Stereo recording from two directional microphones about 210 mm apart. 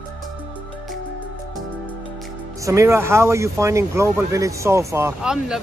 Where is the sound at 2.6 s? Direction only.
15° right (ahead or behind).